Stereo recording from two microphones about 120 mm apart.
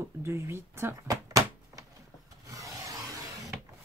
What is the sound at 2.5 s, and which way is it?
Rub, 25° right (ahead or behind).